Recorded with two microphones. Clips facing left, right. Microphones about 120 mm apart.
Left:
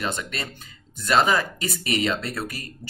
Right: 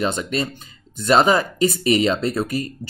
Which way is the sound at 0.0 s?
25° right (ahead or behind).